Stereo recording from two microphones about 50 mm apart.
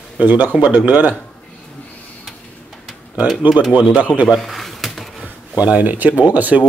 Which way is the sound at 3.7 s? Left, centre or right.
Right.